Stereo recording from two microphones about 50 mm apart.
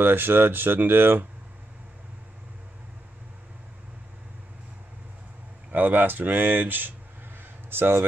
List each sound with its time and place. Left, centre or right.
0.0 s speech: right
5.7 s speech: right